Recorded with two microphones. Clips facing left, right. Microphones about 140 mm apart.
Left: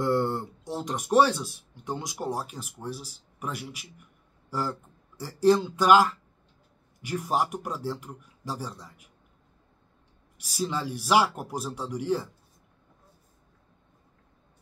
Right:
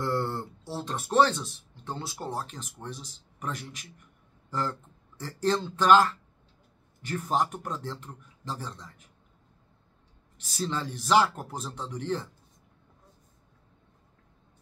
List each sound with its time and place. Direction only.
0.0 s speech: 15° left (ahead or behind)
10.3 s speech: 10° left (ahead or behind)